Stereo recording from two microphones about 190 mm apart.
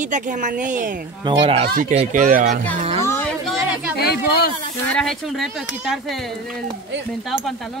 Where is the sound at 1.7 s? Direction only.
45° right (ahead or behind).